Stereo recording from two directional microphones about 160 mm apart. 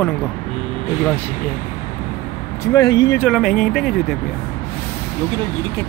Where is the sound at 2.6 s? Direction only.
25° left (ahead or behind).